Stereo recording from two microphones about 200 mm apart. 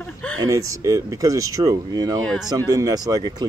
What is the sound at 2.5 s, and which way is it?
Speech, 15° right (ahead or behind).